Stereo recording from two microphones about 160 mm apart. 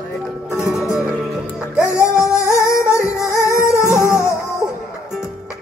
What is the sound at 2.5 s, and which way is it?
Music, 20° left (ahead or behind).